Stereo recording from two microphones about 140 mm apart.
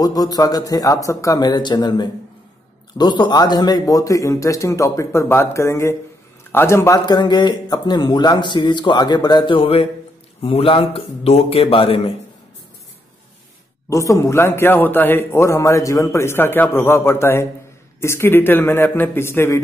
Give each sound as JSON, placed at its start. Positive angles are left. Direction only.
{"t": 0.0, "sound": "a man's voice", "side_deg": 25}
{"t": 13.8, "sound": "a man's voice", "side_deg": 20}